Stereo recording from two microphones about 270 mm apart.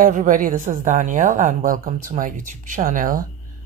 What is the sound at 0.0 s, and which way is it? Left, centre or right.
Speech, right.